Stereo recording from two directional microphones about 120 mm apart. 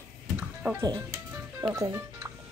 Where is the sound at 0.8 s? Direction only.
30° right (ahead or behind).